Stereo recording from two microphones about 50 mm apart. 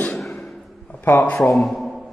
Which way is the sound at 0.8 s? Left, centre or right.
Left.